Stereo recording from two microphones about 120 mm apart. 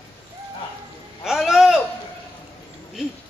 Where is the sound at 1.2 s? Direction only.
5° right (ahead or behind).